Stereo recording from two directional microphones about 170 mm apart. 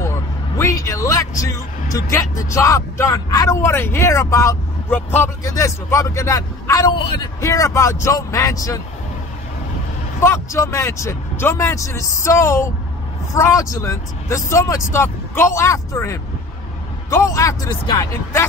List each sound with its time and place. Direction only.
0.0 s vehicle: 15° left (ahead or behind)
1.4 s speech: 20° left (ahead or behind)
10.2 s speech: 15° left (ahead or behind)